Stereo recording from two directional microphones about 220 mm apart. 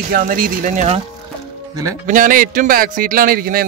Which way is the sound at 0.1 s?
40° right (ahead or behind).